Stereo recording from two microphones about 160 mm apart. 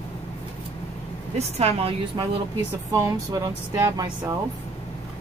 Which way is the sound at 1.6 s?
40° right (ahead or behind).